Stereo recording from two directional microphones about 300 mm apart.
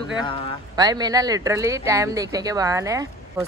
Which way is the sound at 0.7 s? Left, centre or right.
Centre.